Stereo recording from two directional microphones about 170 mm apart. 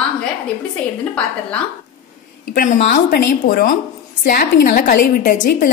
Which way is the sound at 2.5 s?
55° left (ahead or behind).